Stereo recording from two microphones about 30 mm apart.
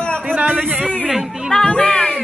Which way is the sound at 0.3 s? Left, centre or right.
Right.